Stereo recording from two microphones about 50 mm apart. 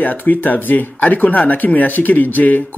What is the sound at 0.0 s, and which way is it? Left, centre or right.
Speech, left.